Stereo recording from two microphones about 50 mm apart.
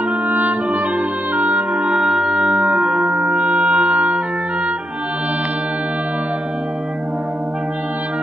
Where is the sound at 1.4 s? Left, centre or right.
Right.